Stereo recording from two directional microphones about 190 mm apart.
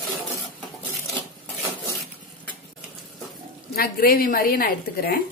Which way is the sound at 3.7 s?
50° left (ahead or behind).